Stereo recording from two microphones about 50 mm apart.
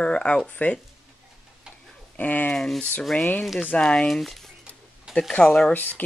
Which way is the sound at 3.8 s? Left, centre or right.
Centre.